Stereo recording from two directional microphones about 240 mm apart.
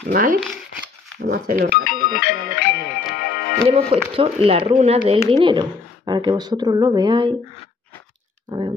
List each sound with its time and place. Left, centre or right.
0.0 s speech: right
2.1 s music: left
3.6 s speech: right
8.5 s speech: right